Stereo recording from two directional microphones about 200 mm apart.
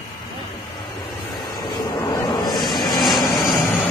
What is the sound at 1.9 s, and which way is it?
Vehicle, 20° left (ahead or behind).